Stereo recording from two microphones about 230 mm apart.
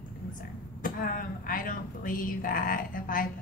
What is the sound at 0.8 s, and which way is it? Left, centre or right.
Speech, left.